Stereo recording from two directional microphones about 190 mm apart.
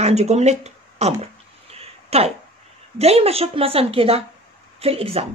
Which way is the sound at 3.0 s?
30° right (ahead or behind).